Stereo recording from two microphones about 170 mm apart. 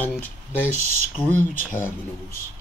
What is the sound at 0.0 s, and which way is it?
Speech, 10° left (ahead or behind).